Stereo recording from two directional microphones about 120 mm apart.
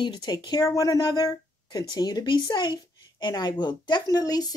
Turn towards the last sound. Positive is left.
turn(degrees=30)  # may be behind; listen again after turning